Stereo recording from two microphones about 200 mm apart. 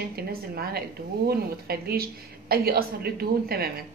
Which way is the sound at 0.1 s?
50° right (ahead or behind).